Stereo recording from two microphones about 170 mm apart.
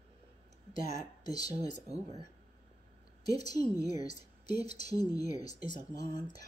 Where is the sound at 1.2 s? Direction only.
25° left (ahead or behind).